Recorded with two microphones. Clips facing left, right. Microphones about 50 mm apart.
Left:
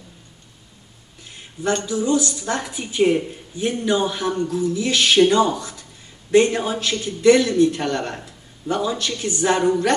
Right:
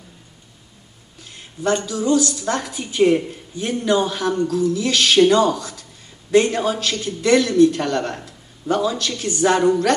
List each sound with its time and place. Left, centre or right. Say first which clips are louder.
1.9 s a man's voice: right 2 dB; left
9.5 s a woman's voice: right 2 dB; centre